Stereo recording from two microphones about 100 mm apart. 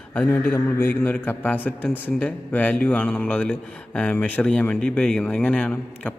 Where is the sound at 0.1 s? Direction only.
20° left (ahead or behind).